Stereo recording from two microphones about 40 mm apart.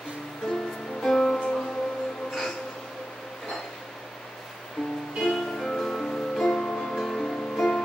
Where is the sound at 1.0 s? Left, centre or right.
Centre.